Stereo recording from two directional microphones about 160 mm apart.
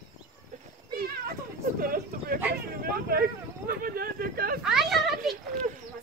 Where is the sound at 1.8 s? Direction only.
65° right (ahead or behind).